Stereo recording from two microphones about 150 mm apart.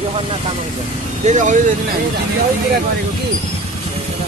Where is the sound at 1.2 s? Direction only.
55° right (ahead or behind).